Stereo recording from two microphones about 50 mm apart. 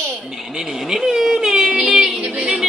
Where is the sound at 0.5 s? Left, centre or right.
Centre.